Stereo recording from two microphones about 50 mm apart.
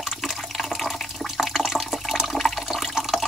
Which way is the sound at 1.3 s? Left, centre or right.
Centre.